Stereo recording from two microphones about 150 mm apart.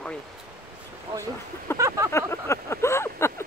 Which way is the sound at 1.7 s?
15° left (ahead or behind).